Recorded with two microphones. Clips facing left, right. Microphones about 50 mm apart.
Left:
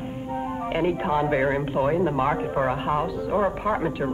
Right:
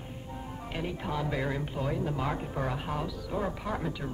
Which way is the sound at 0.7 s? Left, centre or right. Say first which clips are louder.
Left 11 dB; left.